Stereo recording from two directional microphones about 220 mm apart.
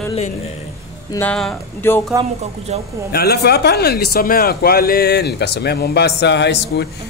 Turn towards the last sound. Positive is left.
turn(degrees=50)  # may be behind; listen again after turning